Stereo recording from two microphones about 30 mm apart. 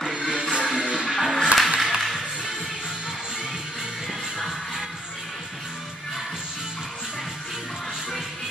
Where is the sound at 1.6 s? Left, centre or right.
Centre.